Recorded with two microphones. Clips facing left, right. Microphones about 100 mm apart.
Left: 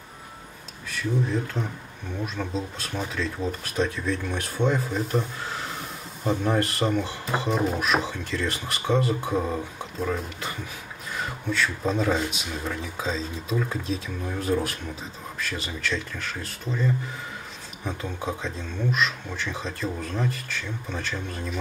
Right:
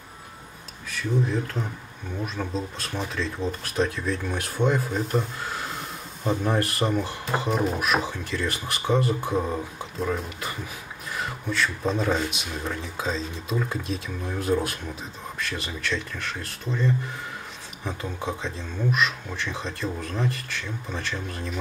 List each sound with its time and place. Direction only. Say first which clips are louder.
0.8 s speech: right 1 dB; centre (ahead or behind)